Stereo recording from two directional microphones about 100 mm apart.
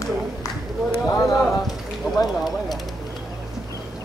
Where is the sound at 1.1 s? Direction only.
35° left (ahead or behind).